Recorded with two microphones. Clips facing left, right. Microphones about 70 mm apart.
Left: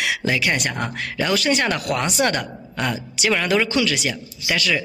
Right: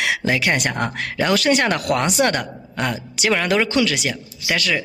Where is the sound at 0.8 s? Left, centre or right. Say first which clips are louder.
Right 3 dB; right.